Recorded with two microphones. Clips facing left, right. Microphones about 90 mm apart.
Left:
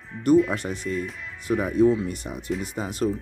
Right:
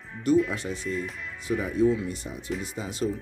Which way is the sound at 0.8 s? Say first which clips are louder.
Left 2 dB; centre (ahead or behind).